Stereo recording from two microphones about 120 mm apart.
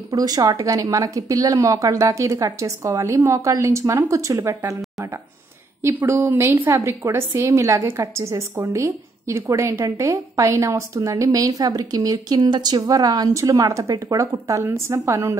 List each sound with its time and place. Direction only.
0.1 s a woman's voice: 30° right (ahead or behind)
5.8 s a woman's voice: 20° right (ahead or behind)